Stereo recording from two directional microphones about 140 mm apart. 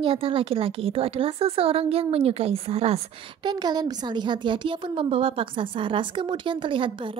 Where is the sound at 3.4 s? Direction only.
30° right (ahead or behind).